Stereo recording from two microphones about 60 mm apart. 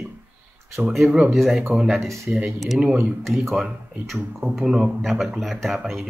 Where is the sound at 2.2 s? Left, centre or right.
Centre.